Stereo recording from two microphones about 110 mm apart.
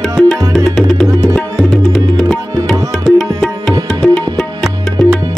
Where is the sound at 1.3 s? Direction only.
Centre (ahead or behind).